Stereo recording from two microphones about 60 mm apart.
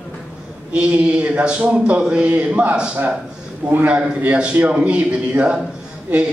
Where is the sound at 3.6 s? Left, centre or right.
Right.